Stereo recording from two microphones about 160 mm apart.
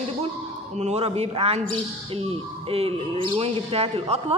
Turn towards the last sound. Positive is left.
turn(degrees=-40)  # may be behind; listen again after turning